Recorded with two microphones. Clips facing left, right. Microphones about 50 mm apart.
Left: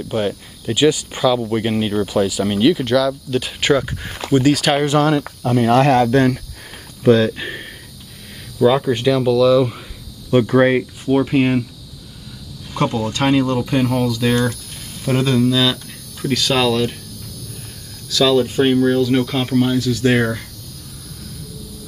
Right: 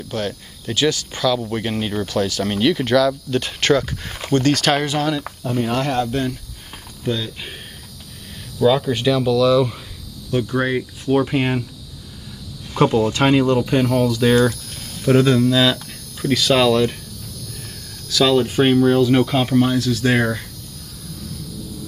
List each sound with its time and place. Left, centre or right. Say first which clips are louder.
0.1 s speech: left 4 dB; centre
4.9 s speech: left 6 dB; left
5.4 s speech: left 8 dB; left
7.2 s speech: left 9 dB; left
8.6 s speech: left 2 dB; centre
10.3 s speech: left 7 dB; left
11.1 s speech: left 2 dB; centre
12.7 s speech: right 3 dB; centre
15.0 s speech: right 3 dB; centre
15.5 s cricket: right 1 dB; centre
16.5 s speech: right 2 dB; centre
18.1 s speech: left 1 dB; centre
19.0 s speech: right 1 dB; centre